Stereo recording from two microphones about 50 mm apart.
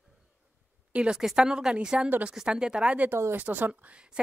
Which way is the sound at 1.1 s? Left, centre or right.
Centre.